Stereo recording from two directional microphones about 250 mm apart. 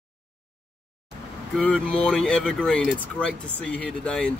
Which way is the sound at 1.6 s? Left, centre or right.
Centre.